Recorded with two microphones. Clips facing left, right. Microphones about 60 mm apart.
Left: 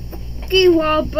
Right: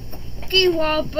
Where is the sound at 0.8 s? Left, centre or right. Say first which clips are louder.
Left 4 dB; centre.